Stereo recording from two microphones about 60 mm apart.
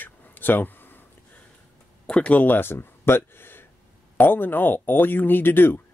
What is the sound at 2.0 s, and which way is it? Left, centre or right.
Speech, centre.